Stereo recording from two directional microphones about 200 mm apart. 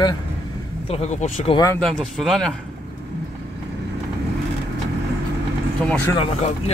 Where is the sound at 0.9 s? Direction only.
30° left (ahead or behind).